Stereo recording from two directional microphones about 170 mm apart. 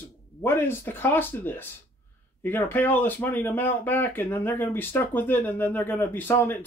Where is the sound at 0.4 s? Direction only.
15° left (ahead or behind).